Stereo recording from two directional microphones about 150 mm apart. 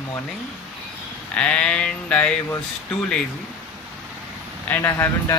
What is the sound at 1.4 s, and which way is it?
Speech, 10° left (ahead or behind).